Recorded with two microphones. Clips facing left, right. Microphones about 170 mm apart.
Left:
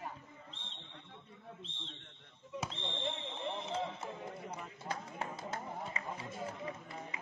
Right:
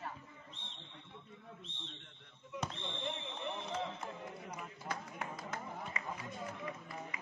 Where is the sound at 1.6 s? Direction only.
30° left (ahead or behind).